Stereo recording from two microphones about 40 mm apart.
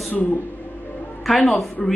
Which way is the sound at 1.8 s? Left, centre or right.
Centre.